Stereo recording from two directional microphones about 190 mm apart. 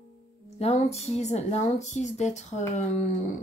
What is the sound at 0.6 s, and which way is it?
Speech, 35° left (ahead or behind).